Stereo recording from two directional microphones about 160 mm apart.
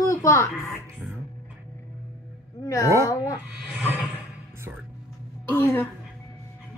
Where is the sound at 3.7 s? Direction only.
10° right (ahead or behind).